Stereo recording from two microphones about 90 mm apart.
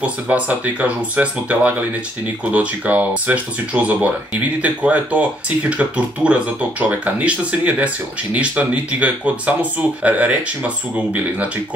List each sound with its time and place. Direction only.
0.0 s speech: 15° right (ahead or behind)